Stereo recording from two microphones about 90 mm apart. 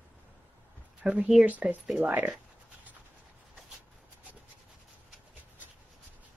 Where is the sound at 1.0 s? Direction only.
15° right (ahead or behind).